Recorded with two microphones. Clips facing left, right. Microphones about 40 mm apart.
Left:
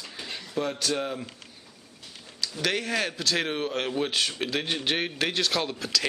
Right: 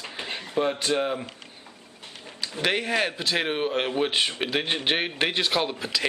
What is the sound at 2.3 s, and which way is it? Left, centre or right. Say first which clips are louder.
Speech: right 2 dB; right.